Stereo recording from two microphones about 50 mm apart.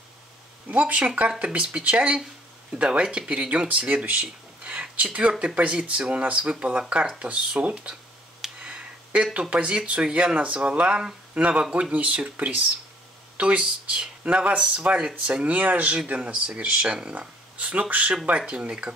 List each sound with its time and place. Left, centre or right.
0.7 s speech: right
15.2 s speech: right